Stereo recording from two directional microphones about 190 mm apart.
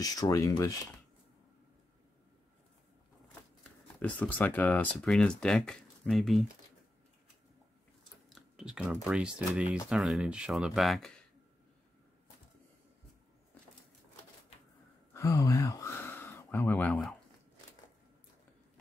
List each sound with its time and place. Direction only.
0.0 s speech: 20° left (ahead or behind)
4.0 s speech: 5° left (ahead or behind)
8.4 s speech: 5° right (ahead or behind)
15.1 s speech: 15° left (ahead or behind)